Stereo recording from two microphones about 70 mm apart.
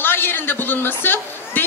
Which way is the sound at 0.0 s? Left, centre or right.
Left.